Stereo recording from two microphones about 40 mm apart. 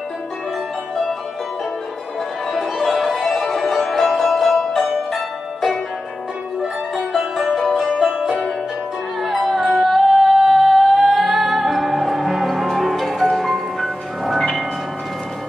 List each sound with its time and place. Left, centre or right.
2.5 s music: centre
5.1 s zither: centre
6.6 s music: centre